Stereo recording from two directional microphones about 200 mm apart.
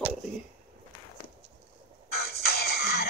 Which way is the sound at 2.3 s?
50° left (ahead or behind).